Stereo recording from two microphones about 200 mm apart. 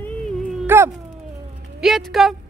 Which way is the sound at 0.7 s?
10° right (ahead or behind).